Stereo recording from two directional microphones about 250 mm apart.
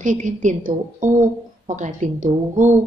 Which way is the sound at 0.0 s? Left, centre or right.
Right.